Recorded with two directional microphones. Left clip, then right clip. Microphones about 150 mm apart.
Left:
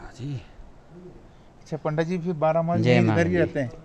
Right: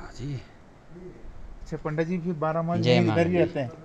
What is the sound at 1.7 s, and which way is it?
Speech, 55° left (ahead or behind).